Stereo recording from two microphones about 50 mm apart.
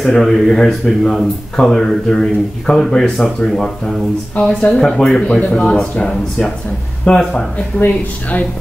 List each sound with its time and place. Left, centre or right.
0.0 s speech: centre
4.5 s a man's voice: left
4.7 s speech: centre
5.2 s a man's voice: left
7.1 s a man's voice: left